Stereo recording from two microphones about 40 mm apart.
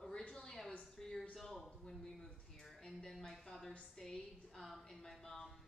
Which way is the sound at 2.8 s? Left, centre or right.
Centre.